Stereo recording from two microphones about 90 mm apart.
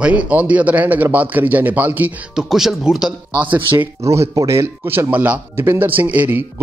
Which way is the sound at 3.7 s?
35° right (ahead or behind).